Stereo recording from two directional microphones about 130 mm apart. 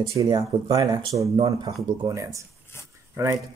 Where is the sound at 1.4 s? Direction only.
40° right (ahead or behind).